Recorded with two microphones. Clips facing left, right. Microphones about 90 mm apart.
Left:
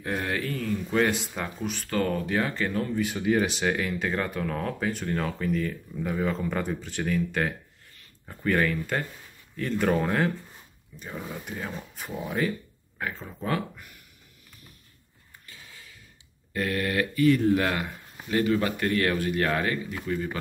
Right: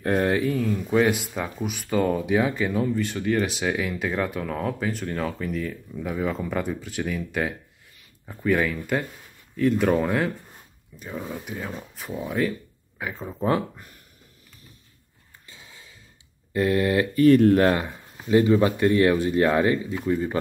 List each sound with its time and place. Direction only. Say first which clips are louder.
0.0 s speech: right 8 dB; 45° right (ahead or behind)
0.3 s speech: right 7 dB; 15° right (ahead or behind)
0.6 s speech: right 4 dB; 5° right (ahead or behind)
3.0 s speech: even; 5° left (ahead or behind)
13.1 s speech: right 8 dB; 20° right (ahead or behind)
15.4 s a sound: right 1 dB; 20° right (ahead or behind)
16.5 s speech: right 6 dB; 20° right (ahead or behind)
17.1 s speech: right 6 dB; 40° right (ahead or behind)
18.3 s speech: right 6 dB; 20° right (ahead or behind)